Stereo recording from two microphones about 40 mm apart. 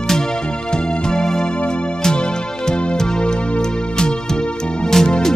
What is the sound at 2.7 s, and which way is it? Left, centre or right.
Music, centre.